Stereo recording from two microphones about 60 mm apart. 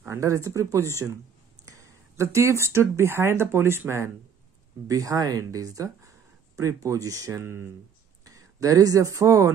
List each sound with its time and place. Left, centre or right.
0.0 s speech: right
4.8 s speech: right
5.4 s speech: right
7.3 s speech: right
8.3 s speech: right